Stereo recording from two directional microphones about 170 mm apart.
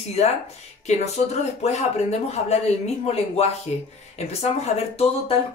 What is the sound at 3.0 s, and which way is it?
Speech, 35° left (ahead or behind).